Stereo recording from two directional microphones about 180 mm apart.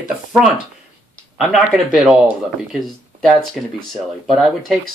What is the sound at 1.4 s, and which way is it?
Speech, 5° right (ahead or behind).